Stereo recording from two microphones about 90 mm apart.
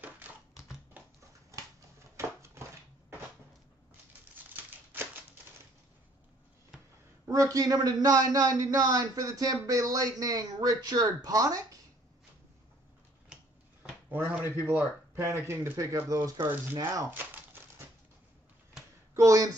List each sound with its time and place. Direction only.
0.0 s typewriter: 20° right (ahead or behind)
2.1 s a sound: 30° right (ahead or behind)
4.5 s typewriter: 20° right (ahead or behind)
7.2 s a man's voice: 40° right (ahead or behind)
14.0 s speech: 20° right (ahead or behind)
15.1 s speech: 30° right (ahead or behind)
16.1 s speech: 25° right (ahead or behind)
17.2 s crumpling: 25° right (ahead or behind)
19.1 s a sound: 40° right (ahead or behind)